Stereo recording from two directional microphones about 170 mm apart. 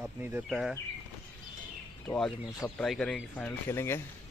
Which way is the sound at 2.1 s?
20° left (ahead or behind).